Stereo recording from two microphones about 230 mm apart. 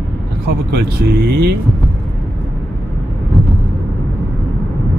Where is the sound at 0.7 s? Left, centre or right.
Right.